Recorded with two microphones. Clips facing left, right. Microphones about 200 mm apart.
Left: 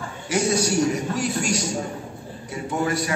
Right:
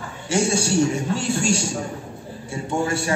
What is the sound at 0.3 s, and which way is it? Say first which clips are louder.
A man's voice: right 1 dB; 30° right (ahead or behind).